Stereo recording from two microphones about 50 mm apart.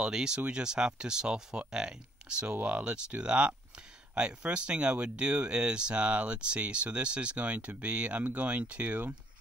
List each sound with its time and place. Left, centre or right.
0.0 s speech: centre